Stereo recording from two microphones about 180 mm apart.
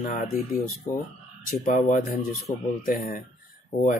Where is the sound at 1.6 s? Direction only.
45° left (ahead or behind).